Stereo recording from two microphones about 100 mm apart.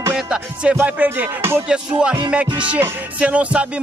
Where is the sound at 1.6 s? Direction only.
10° right (ahead or behind).